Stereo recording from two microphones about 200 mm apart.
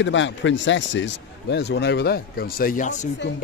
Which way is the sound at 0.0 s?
70° left (ahead or behind).